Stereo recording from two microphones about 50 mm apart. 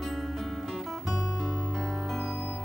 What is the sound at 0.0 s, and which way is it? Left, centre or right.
Music, centre.